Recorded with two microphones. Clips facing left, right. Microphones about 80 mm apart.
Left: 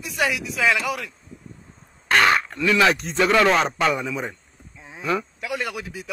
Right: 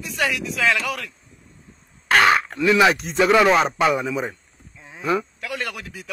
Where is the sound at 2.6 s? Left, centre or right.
Centre.